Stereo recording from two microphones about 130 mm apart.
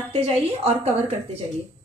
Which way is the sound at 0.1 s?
50° right (ahead or behind).